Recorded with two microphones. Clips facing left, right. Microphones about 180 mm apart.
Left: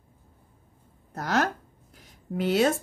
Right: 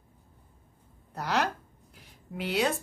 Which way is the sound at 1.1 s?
45° left (ahead or behind).